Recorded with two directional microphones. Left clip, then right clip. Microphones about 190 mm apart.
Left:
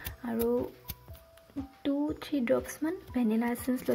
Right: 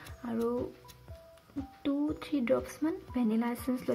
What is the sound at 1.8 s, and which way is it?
Speech, 10° left (ahead or behind).